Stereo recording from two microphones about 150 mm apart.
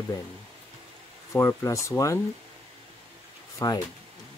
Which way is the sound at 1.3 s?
20° left (ahead or behind).